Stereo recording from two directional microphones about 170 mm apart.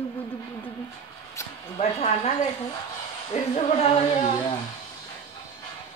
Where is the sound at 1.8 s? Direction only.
35° left (ahead or behind).